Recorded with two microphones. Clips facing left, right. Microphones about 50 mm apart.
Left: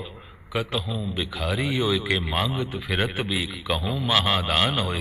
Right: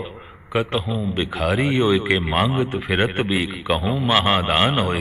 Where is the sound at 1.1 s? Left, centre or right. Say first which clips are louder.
Right 7 dB; right.